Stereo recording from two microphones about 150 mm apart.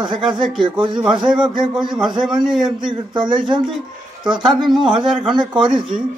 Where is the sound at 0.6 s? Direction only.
35° right (ahead or behind).